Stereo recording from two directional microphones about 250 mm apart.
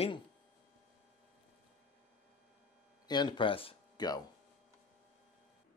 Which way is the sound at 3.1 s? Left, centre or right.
Centre.